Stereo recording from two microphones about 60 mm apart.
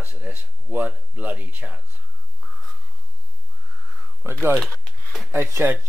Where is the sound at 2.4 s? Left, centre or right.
Centre.